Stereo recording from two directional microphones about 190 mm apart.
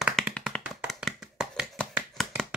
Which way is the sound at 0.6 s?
5° right (ahead or behind).